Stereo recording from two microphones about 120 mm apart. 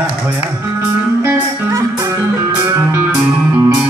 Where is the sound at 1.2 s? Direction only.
20° right (ahead or behind).